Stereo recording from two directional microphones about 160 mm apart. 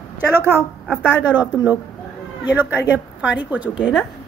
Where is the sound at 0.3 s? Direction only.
15° right (ahead or behind).